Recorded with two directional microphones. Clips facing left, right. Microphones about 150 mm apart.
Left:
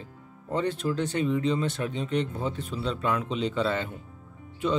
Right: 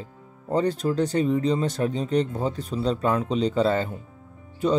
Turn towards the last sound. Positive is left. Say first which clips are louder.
# right 4 dB
turn(degrees=-40)  # may be behind; listen again after turning